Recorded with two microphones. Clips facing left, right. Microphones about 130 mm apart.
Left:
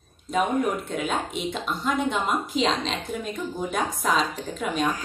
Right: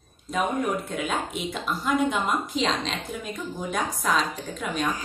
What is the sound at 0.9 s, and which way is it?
A woman's voice, centre (ahead or behind).